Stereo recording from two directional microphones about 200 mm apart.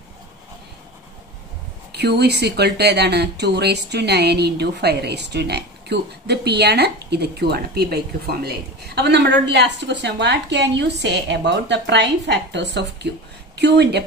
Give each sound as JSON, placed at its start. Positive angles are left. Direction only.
{"t": 1.9, "sound": "speech", "side_deg": -55}